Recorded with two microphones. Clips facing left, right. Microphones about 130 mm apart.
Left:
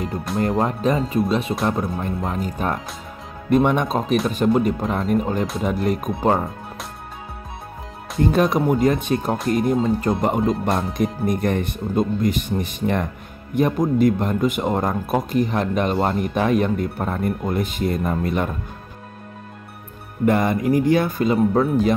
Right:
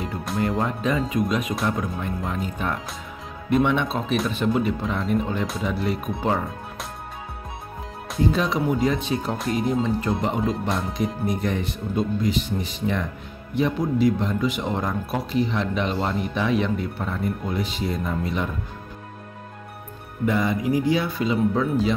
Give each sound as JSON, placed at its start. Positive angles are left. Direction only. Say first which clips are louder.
{"t": 0.4, "sound": "speech", "louder": "left 4 dB", "side_deg": 40}
{"t": 8.2, "sound": "speech", "louder": "left 4 dB", "side_deg": 55}
{"t": 20.2, "sound": "speech", "louder": "left 4 dB", "side_deg": 55}